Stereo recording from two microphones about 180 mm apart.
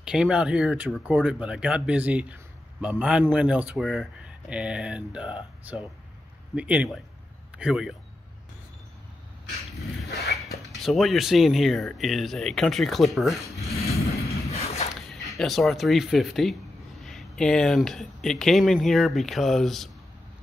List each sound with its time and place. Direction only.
0.0 s speech: 5° right (ahead or behind)
10.8 s speech: centre (ahead or behind)
14.5 s a sound: 35° left (ahead or behind)
15.0 s speech: centre (ahead or behind)